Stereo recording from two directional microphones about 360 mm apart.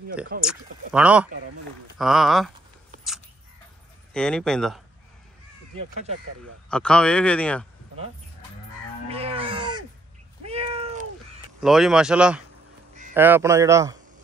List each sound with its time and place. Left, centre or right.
0.4 s speech: centre
4.1 s speech: centre
6.7 s speech: centre
9.1 s livestock: centre
10.4 s cat: centre
11.6 s a man's voice: centre